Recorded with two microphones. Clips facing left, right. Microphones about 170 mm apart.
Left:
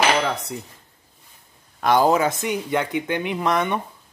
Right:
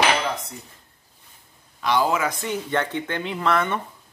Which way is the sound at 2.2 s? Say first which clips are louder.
Left 4 dB; 20° left (ahead or behind).